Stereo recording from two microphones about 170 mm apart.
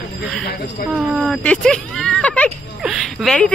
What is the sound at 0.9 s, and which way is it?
Speech, centre (ahead or behind).